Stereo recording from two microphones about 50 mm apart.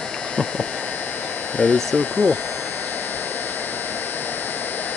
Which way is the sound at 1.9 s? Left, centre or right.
Left.